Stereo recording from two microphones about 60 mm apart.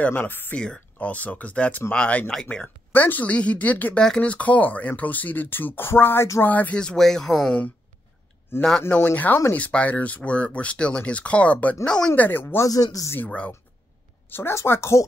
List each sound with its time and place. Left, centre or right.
0.0 s speech: left
0.6 s speech: centre; by 6.2 s left
6.4 s speech: left
6.7 s speech: centre
7.0 s speech: centre
8.5 s speech: left
9.0 s speech: left
11.8 s speech: centre
12.2 s speech: left
12.6 s speech: left
14.5 s speech: left